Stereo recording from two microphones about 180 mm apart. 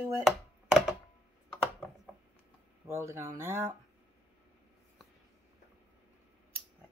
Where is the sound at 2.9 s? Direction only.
15° right (ahead or behind).